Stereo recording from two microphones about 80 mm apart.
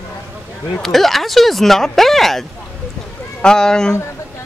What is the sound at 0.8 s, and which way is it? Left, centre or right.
Speech, centre.